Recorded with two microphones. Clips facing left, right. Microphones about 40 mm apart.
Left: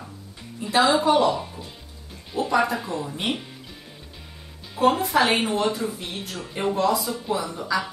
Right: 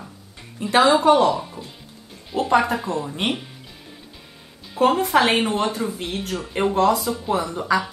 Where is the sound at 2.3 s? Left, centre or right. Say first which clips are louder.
Right 5 dB; right.